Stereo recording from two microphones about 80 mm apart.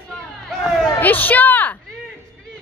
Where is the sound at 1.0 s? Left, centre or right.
Left.